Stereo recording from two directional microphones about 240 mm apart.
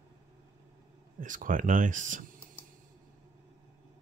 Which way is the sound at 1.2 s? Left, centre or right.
Right.